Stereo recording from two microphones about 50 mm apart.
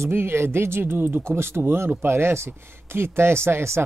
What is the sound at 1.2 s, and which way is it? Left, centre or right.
Speech, right.